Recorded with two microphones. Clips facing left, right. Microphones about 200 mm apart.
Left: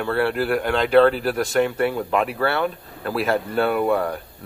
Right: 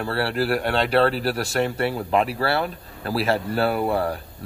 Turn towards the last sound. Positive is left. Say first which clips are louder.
# left 2 dB
turn(degrees=-30)  # may be behind; listen again after turning